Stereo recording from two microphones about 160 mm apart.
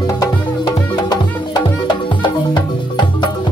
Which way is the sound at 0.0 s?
25° left (ahead or behind).